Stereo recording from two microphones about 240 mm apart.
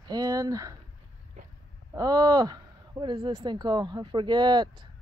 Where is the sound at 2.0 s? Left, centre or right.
Centre.